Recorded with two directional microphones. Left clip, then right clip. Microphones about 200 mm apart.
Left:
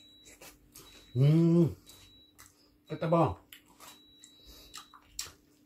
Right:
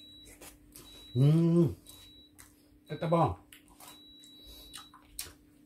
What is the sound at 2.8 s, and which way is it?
Speech, 15° right (ahead or behind).